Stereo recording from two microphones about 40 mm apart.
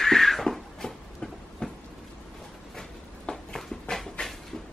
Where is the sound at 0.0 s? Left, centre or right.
Centre.